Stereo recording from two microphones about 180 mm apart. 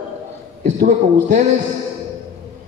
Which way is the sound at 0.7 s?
40° right (ahead or behind).